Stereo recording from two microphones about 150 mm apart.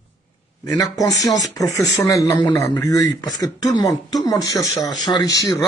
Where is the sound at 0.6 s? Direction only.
25° left (ahead or behind).